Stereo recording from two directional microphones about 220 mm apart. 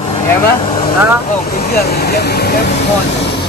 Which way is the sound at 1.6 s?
45° left (ahead or behind).